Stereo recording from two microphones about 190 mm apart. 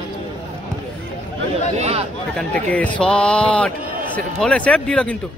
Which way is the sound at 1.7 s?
35° right (ahead or behind).